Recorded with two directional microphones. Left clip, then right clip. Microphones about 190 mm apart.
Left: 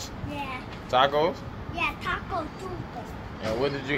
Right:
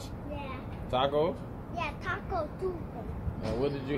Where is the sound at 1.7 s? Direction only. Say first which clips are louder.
Left 7 dB; 20° right (ahead or behind).